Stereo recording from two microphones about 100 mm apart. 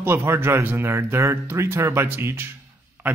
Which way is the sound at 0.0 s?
25° right (ahead or behind).